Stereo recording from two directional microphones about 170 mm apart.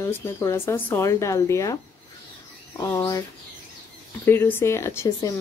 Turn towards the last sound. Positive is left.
turn(degrees=15)  # may be behind; listen again after turning